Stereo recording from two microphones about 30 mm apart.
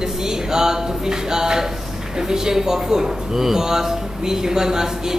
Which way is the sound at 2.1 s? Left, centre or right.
Right.